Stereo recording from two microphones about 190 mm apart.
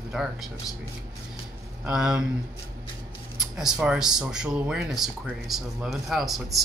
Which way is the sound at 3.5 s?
5° right (ahead or behind).